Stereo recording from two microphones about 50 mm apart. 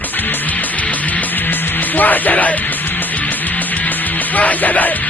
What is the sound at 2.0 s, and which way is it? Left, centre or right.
Music, left.